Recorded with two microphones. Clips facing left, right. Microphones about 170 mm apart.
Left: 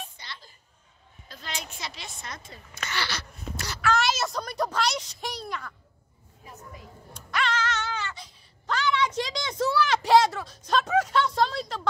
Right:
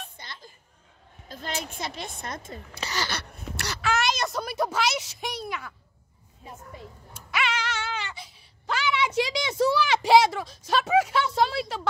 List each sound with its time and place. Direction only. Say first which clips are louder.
0.2 s music: even; 50° right (ahead or behind)
1.3 s a woman's voice: right 5 dB; 50° right (ahead or behind)
2.7 s speech: right 1 dB; 35° right (ahead or behind)
3.1 s a sound: right 1 dB; 65° right (ahead or behind)
3.9 s speech: even; centre (ahead or behind)
7.2 s a sound: left 1 dB; 5° right (ahead or behind)